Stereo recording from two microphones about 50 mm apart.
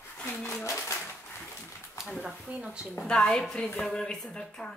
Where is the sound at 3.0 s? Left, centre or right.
Centre.